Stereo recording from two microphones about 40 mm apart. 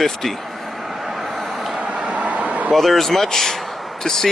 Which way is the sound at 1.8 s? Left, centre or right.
Right.